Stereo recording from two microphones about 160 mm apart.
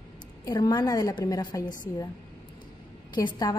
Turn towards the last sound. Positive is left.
turn(degrees=25)  # may be behind; listen again after turning